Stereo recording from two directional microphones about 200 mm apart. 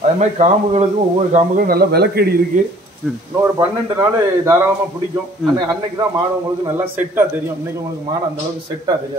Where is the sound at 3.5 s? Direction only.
15° right (ahead or behind).